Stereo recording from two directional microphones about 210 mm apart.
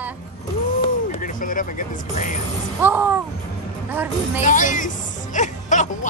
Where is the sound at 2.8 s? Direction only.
10° right (ahead or behind).